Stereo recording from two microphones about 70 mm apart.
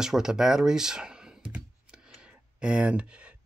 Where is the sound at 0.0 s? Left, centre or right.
Centre.